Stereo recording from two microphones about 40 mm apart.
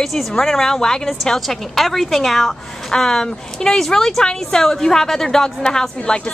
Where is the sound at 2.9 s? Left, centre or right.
Centre.